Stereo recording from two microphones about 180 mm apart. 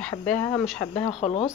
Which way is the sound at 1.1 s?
35° left (ahead or behind).